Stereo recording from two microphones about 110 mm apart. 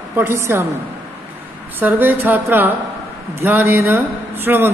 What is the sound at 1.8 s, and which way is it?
A woman's voice, 15° right (ahead or behind).